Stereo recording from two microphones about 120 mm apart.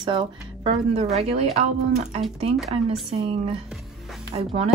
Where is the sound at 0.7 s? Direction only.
60° right (ahead or behind).